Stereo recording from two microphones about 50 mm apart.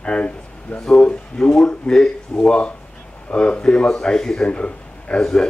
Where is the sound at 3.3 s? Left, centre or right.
Centre.